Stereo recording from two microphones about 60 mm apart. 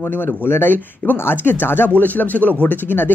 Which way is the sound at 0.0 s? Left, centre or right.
Left.